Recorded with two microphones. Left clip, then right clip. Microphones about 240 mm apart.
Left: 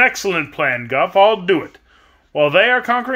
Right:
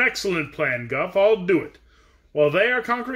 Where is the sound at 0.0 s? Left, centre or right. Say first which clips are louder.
Left 6 dB; centre.